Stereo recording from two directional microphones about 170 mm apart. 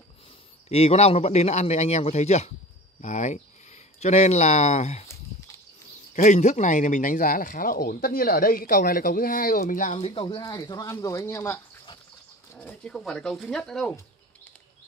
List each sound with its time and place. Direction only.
0.7 s speech: 35° left (ahead or behind)
6.1 s speech: 45° left (ahead or behind)
9.9 s speech: 35° left (ahead or behind); by 13.9 s 5° left (ahead or behind)